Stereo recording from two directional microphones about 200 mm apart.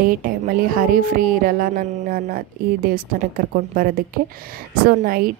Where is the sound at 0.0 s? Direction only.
45° right (ahead or behind).